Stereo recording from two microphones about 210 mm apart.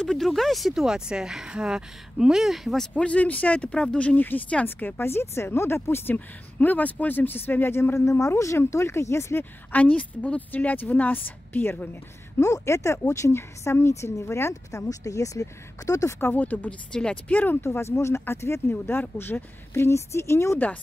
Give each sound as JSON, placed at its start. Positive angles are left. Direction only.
{"t": 0.0, "sound": "speech", "side_deg": 0}